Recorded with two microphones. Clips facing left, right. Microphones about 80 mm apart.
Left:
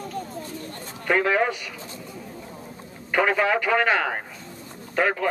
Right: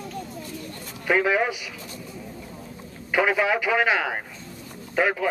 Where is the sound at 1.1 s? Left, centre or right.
Centre.